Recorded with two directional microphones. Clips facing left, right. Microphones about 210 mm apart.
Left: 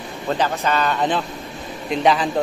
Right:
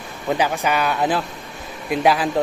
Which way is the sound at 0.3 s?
15° right (ahead or behind).